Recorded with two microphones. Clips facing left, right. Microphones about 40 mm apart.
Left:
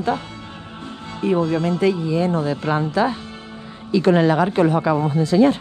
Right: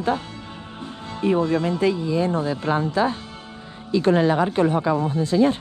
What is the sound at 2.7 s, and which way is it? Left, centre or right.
Speech, left.